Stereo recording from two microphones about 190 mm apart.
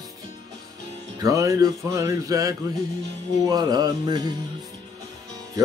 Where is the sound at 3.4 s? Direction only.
20° right (ahead or behind).